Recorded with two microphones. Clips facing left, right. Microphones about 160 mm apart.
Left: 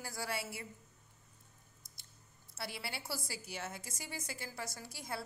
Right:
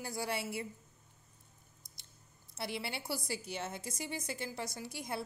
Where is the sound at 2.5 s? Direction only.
20° right (ahead or behind).